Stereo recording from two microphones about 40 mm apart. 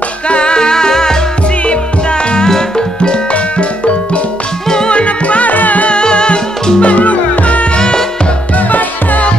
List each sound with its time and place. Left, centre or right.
0.3 s music: left
1.7 s music: left
4.6 s music: left
5.9 s music: left
7.7 s music: centre
8.5 s music: left